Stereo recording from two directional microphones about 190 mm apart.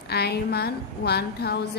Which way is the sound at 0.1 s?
55° left (ahead or behind).